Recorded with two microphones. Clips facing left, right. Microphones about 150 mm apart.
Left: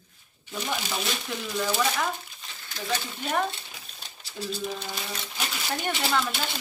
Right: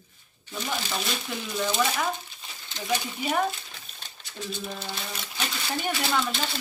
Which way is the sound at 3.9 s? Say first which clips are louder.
Even; 5° left (ahead or behind).